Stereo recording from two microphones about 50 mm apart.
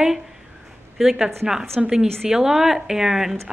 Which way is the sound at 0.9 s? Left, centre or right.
Centre.